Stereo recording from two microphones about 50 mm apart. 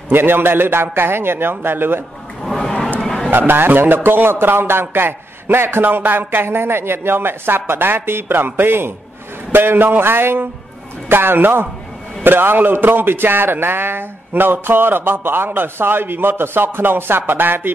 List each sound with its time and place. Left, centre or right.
0.1 s a man's voice: right
2.4 s a sound: centre
3.3 s a man's voice: right